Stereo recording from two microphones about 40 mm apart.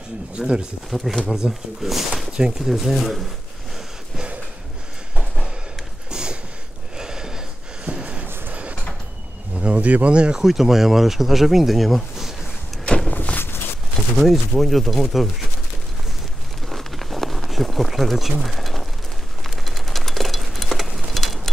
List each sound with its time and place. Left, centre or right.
0.4 s speech: right
0.8 s speech: centre
1.2 s speech: centre
1.8 s speech: centre
2.3 s speech: centre
2.7 s speech: centre
6.0 s a sound: centre
7.9 s a sound: right
9.6 s speech: right
10.1 s speech: right
10.4 s speech: centre
13.1 s a sound: left
14.2 s speech: centre
16.6 s a sound: centre